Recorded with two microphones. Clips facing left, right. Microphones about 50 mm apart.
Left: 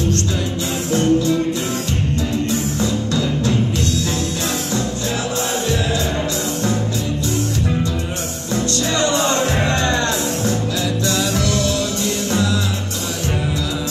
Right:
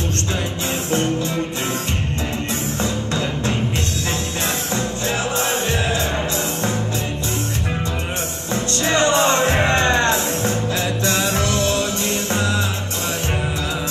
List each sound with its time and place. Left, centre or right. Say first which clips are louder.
0.9 s music: left 6 dB; right
2.8 s music: left 3 dB; right
8.8 s music: right 4 dB; right